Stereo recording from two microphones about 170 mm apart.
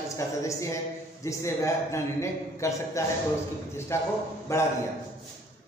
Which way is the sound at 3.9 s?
15° left (ahead or behind).